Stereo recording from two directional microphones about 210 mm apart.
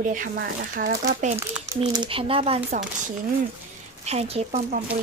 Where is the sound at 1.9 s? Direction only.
25° right (ahead or behind).